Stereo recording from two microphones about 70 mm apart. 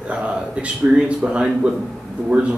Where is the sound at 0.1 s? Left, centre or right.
Centre.